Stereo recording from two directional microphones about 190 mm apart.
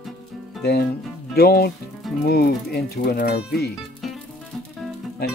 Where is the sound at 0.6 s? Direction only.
60° left (ahead or behind).